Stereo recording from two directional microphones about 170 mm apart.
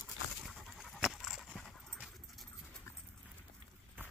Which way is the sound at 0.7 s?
Centre (ahead or behind).